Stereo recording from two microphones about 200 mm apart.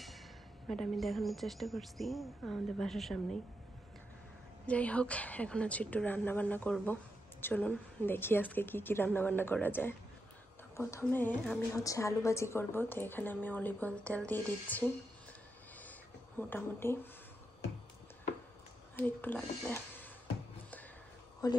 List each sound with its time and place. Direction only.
0.7 s a woman's voice: centre (ahead or behind)
4.6 s a woman's voice: 5° left (ahead or behind)
15.8 s a sound: 10° left (ahead or behind)
18.9 s a woman's voice: 10° left (ahead or behind)
21.4 s a woman's voice: 20° left (ahead or behind)